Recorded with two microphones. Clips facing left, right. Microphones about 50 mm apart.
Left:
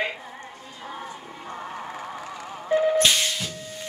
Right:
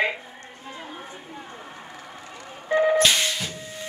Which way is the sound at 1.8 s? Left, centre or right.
Left.